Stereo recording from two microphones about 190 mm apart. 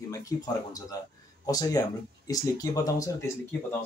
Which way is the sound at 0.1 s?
20° left (ahead or behind).